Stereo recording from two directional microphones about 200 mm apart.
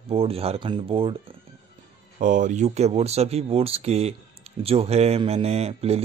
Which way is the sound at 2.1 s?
40° right (ahead or behind).